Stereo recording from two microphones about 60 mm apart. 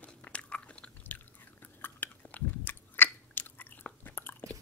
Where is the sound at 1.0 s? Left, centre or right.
Left.